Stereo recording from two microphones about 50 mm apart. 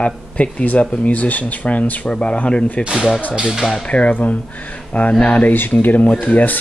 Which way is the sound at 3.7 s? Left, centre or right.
Left.